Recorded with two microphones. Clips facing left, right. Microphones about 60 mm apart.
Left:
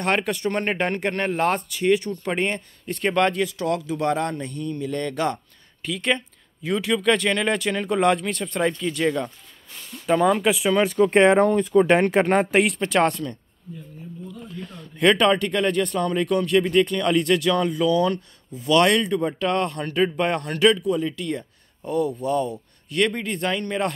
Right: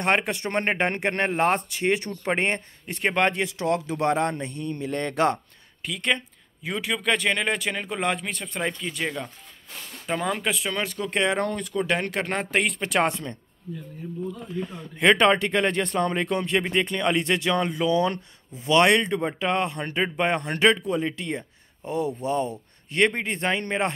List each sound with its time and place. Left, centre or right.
0.0 s speech: right
2.9 s speech: right
5.9 s speech: centre
6.6 s speech: centre
10.0 s speech: centre
10.8 s speech: left
11.7 s speech: left
12.5 s speech: centre
13.1 s speech: right
14.5 s speech: right